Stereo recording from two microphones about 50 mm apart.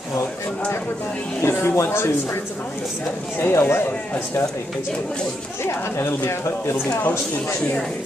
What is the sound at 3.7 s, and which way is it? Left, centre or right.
Speech, left.